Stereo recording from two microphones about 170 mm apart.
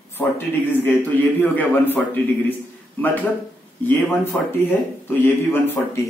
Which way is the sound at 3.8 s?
10° left (ahead or behind).